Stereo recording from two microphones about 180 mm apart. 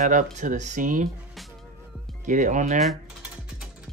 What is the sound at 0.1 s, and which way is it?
Speech, 45° right (ahead or behind).